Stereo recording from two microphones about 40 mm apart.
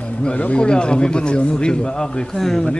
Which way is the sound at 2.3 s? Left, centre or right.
Centre.